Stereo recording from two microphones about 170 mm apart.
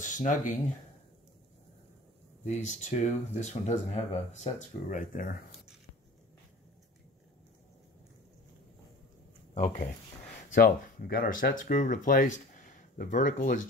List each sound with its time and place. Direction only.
0.0 s speech: 50° left (ahead or behind)
2.4 s speech: 45° left (ahead or behind)
9.5 s speech: 45° left (ahead or behind)